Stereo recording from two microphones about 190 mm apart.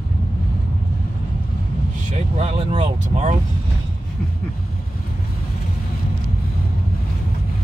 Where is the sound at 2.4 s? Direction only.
30° right (ahead or behind).